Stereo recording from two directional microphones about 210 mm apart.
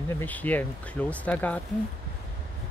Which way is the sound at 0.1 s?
10° left (ahead or behind).